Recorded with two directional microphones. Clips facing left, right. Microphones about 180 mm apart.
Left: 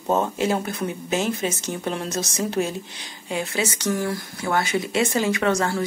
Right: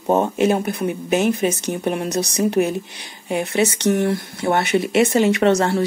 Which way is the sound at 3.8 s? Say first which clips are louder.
Right 6 dB; 25° right (ahead or behind).